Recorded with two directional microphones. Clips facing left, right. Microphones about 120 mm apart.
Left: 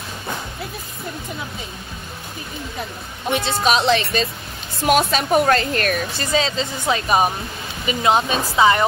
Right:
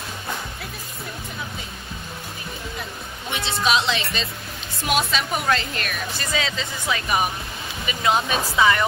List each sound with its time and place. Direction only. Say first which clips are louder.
3.3 s speech: left 4 dB; 45° left (ahead or behind)
6.1 s speech: left 6 dB; 30° left (ahead or behind)